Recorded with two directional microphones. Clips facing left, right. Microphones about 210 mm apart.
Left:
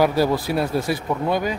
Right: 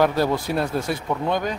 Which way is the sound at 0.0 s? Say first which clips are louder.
Left 1 dB; 5° left (ahead or behind).